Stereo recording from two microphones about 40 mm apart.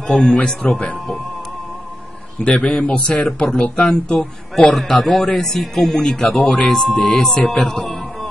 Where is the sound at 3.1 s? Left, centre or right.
Left.